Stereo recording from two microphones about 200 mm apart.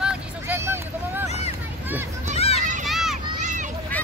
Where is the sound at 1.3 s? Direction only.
30° left (ahead or behind).